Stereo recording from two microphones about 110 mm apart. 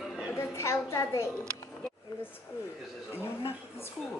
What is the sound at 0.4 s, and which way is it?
Speech, 25° left (ahead or behind).